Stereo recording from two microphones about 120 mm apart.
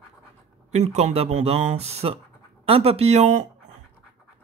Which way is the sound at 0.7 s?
70° right (ahead or behind).